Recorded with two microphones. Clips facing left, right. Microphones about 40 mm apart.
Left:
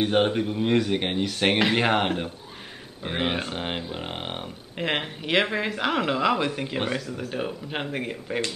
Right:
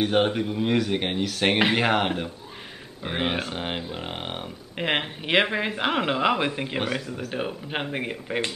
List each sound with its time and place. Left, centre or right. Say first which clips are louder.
0.0 s speech: even; centre
4.7 s speech: right 1 dB; centre
6.8 s speech: left 1 dB; centre